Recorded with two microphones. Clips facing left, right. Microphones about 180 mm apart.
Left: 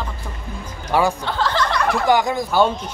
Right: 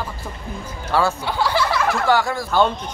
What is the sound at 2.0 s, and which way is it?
Speech, 15° left (ahead or behind).